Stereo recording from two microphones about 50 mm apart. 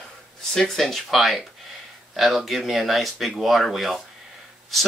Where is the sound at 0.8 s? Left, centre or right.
Centre.